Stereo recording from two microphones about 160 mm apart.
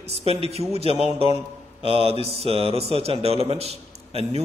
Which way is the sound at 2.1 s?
40° right (ahead or behind).